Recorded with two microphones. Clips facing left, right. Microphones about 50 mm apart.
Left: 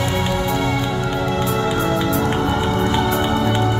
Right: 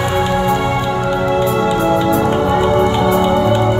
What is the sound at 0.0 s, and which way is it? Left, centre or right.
Music, right.